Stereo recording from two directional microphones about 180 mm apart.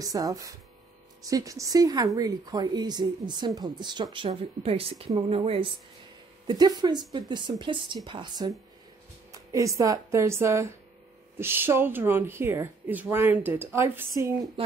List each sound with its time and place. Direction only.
0.0 s speech: 20° right (ahead or behind)
6.4 s speech: 25° right (ahead or behind)